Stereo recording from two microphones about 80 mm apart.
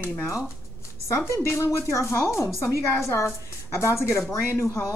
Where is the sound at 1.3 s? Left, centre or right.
Left.